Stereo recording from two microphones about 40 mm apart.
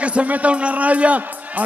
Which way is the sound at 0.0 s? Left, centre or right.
Right.